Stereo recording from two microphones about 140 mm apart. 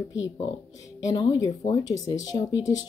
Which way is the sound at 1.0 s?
30° left (ahead or behind).